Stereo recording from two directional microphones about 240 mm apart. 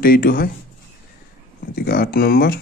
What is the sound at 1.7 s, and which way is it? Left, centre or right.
Speech, left.